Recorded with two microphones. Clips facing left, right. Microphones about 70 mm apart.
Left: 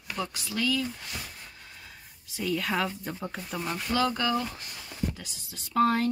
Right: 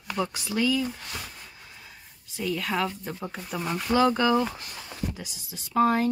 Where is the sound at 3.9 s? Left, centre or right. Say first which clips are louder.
Right 6 dB; right.